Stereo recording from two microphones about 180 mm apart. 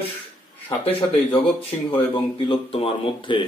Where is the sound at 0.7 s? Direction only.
10° left (ahead or behind).